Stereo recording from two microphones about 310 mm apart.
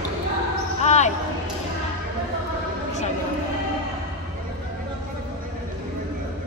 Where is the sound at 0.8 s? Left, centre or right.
Left.